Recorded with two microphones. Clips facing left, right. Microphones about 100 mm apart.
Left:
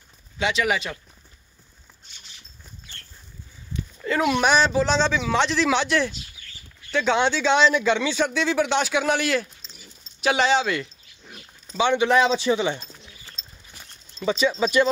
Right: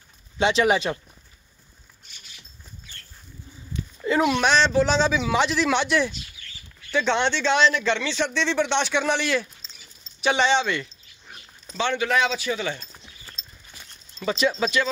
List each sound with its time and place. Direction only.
0.4 s speech: 30° right (ahead or behind)
4.0 s a sound: 10° right (ahead or behind)
4.3 s speech: 5° left (ahead or behind)
11.7 s speech: 15° left (ahead or behind)
12.2 s speech: 30° left (ahead or behind)
14.2 s speech: centre (ahead or behind)